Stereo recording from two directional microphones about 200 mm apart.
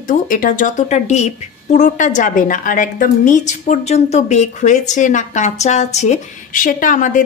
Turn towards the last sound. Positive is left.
turn(degrees=40)  # may be behind; listen again after turning